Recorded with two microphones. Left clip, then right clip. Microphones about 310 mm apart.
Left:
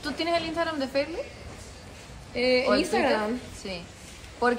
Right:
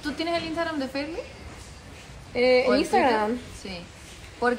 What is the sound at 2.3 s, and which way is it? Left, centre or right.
Speech, right.